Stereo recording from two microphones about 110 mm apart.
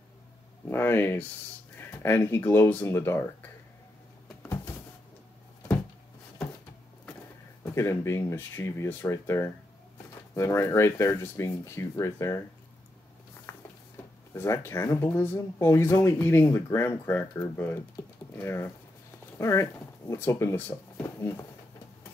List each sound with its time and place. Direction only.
0.7 s speech: 20° left (ahead or behind)
7.6 s speech: 25° left (ahead or behind)
13.5 s a sound: 25° left (ahead or behind)
14.3 s speech: 25° left (ahead or behind)